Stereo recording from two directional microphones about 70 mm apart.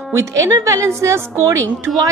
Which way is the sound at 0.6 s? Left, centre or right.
Right.